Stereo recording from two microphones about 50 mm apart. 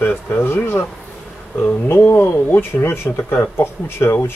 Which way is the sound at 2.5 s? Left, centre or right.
Left.